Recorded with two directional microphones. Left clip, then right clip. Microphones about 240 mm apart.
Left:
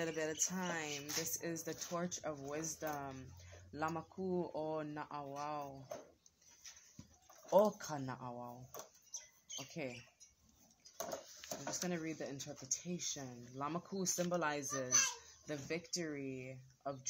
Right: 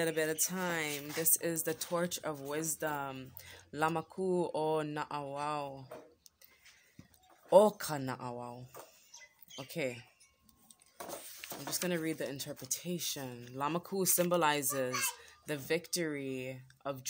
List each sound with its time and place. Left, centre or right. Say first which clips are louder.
0.0 s a woman's voice: right 6 dB; right
7.4 s a woman's voice: right 7 dB; right
9.6 s a woman's voice: right 8 dB; right
11.7 s a woman's voice: right 8 dB; right